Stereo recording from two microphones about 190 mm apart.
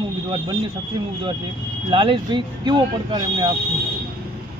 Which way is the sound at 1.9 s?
25° right (ahead or behind).